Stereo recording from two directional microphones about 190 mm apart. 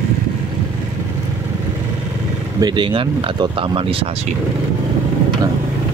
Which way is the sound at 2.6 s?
25° right (ahead or behind).